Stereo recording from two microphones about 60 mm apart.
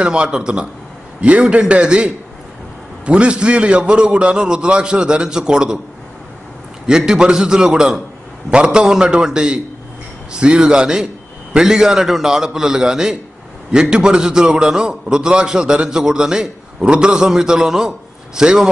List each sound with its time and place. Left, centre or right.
0.0 s a man's voice: centre
6.9 s a man's voice: centre